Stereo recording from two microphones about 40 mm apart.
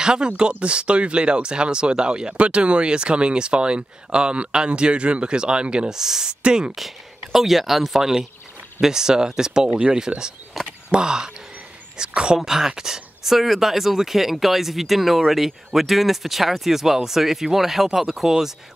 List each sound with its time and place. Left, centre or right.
0.0 s speech: centre
5.9 s speech: centre
6.4 s speech: right
7.3 s speech: centre
10.6 s speech: centre
10.9 s speech: centre
12.4 s speech: centre